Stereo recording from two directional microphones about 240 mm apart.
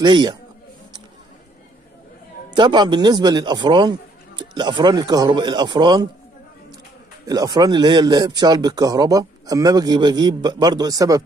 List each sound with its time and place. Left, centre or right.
0.0 s a man's voice: centre
2.5 s speech: centre
7.2 s speech: centre